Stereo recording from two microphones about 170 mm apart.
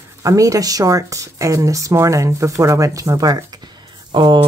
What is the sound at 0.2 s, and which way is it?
Speech, 20° right (ahead or behind).